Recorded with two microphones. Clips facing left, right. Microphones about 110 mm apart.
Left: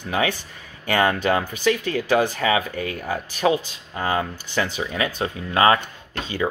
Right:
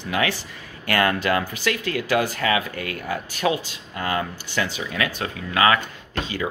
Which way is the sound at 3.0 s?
35° left (ahead or behind).